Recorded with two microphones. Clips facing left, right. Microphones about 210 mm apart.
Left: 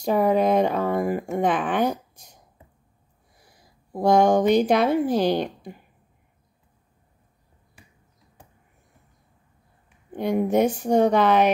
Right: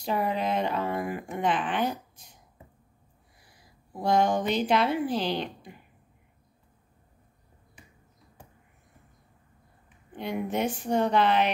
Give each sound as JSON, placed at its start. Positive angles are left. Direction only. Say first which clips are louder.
{"t": 0.0, "sound": "a sound", "louder": "left 8 dB", "side_deg": 45}
{"t": 3.9, "sound": "speech", "louder": "left 7 dB", "side_deg": 45}
{"t": 10.1, "sound": "speech", "louder": "left 9 dB", "side_deg": 45}